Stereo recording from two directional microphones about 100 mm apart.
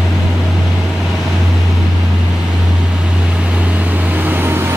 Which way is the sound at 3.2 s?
10° right (ahead or behind).